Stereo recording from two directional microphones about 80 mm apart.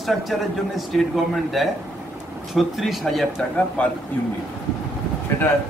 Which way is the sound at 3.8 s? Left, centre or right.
Centre.